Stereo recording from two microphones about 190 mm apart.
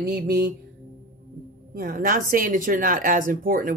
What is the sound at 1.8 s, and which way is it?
A woman's voice, 45° right (ahead or behind).